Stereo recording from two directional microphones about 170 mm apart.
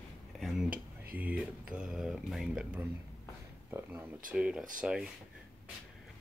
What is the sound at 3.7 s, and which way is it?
Speech, 15° right (ahead or behind).